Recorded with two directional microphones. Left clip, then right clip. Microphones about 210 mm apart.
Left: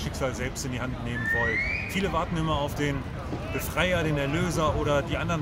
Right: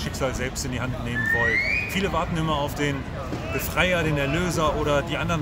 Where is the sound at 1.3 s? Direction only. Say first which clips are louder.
Right 5 dB; 5° right (ahead or behind).